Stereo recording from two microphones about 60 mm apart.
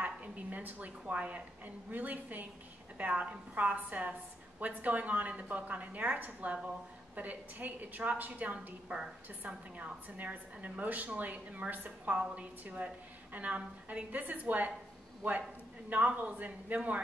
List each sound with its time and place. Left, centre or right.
0.0 s a woman's voice: right
15.9 s a woman's voice: right